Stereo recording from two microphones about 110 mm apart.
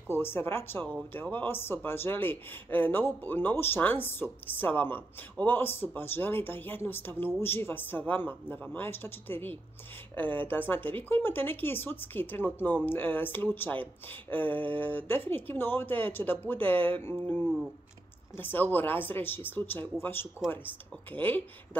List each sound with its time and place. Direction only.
0.1 s speech: 20° left (ahead or behind)